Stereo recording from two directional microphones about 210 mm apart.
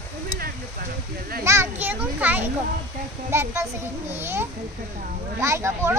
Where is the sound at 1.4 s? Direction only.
10° right (ahead or behind).